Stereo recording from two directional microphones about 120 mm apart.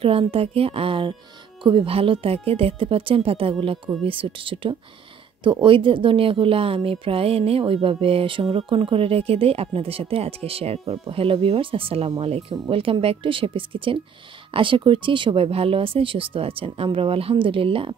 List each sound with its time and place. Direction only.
0.0 s speech: 50° right (ahead or behind)